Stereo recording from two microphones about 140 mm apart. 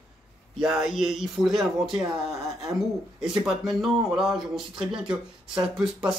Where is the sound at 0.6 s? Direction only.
5° right (ahead or behind).